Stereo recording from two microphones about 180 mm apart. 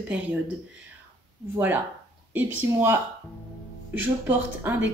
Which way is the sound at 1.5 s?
10° right (ahead or behind).